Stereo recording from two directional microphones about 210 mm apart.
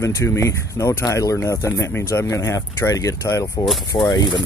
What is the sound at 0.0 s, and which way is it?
Speech, 15° left (ahead or behind).